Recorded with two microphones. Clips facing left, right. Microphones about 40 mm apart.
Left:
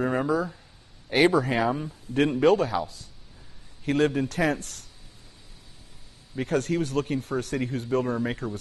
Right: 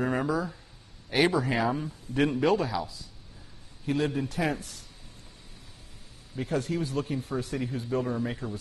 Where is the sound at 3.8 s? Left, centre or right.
Left.